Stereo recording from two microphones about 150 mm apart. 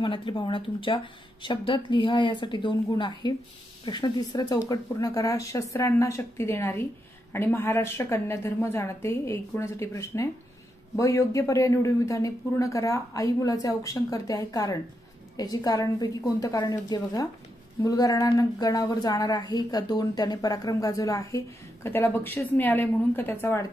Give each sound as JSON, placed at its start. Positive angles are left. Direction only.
{"t": 0.0, "sound": "a woman's voice", "side_deg": 35}